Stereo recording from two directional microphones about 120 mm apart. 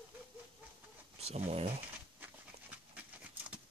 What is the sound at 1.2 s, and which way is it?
Speech, 55° right (ahead or behind).